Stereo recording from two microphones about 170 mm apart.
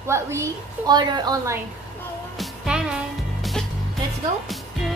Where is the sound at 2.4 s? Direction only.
5° right (ahead or behind).